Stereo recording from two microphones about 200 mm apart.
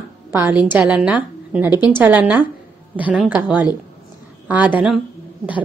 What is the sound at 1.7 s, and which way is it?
Speech, 20° left (ahead or behind).